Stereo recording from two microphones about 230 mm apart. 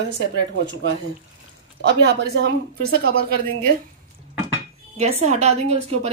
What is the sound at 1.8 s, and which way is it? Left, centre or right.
Speech, right.